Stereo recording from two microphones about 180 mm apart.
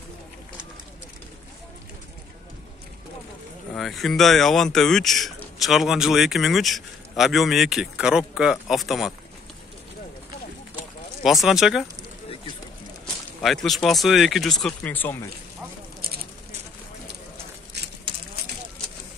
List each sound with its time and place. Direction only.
3.7 s speech: centre (ahead or behind)
11.2 s speech: centre (ahead or behind)
13.0 s speech: centre (ahead or behind)
17.8 s a sound: 70° right (ahead or behind)